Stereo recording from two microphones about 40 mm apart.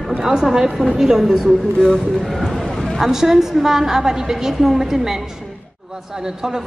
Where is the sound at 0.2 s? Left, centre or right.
Centre.